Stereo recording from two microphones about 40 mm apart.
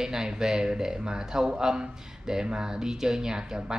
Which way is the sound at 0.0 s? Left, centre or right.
Centre.